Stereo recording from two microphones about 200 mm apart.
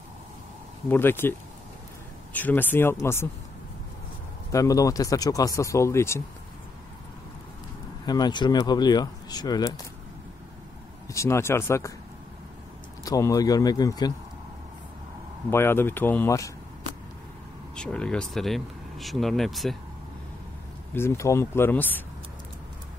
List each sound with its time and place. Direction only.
0.8 s speech: 10° left (ahead or behind)
2.3 s speech: 10° left (ahead or behind)
4.5 s speech: 15° left (ahead or behind)
8.0 s speech: 20° left (ahead or behind)
11.1 s speech: 15° left (ahead or behind)
13.0 s speech: 15° left (ahead or behind)
15.5 s speech: 10° left (ahead or behind)
17.7 s speech: 5° left (ahead or behind)
20.9 s speech: 15° left (ahead or behind)